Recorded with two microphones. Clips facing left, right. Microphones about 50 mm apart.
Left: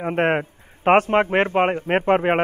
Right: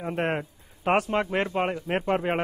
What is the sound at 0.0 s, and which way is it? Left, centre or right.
A man's voice, left.